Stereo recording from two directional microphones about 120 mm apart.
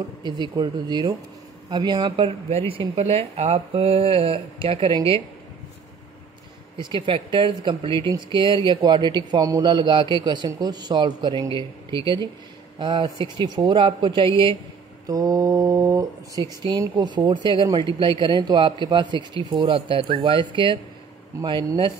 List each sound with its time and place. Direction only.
0.2 s a man's voice: 35° right (ahead or behind)
6.8 s a man's voice: 45° right (ahead or behind)
15.0 s mantra: 30° right (ahead or behind)
16.4 s a man's voice: 35° right (ahead or behind)